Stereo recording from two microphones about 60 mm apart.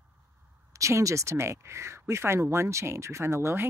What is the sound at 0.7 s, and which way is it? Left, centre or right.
Speech, right.